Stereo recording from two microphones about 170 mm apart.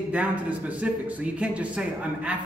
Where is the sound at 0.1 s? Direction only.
10° right (ahead or behind).